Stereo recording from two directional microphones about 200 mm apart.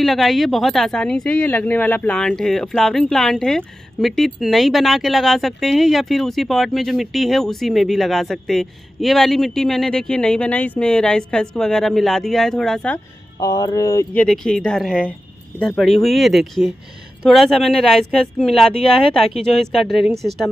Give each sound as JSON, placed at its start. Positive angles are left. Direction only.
{"t": 0.0, "sound": "speech", "side_deg": 0}
{"t": 13.4, "sound": "speech", "side_deg": 20}
{"t": 14.2, "sound": "speech", "side_deg": 5}